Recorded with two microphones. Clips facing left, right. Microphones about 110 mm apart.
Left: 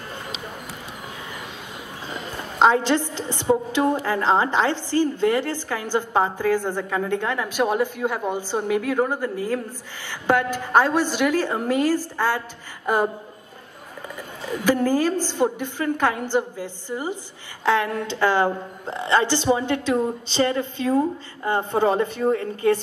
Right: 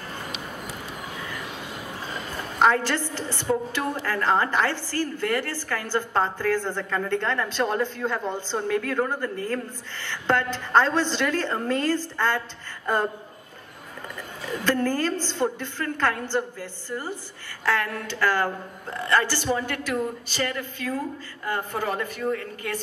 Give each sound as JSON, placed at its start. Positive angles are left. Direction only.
{"t": 2.6, "sound": "a woman's voice", "side_deg": 20}
{"t": 14.6, "sound": "a woman's voice", "side_deg": 10}